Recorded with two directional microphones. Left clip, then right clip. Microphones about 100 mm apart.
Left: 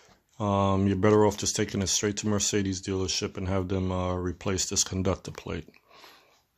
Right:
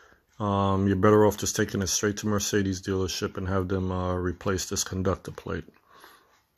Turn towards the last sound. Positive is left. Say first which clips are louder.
# right 2 dB
turn(degrees=15)  # may be behind; listen again after turning